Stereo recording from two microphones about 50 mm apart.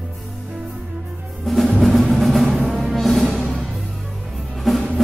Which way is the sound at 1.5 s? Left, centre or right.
Centre.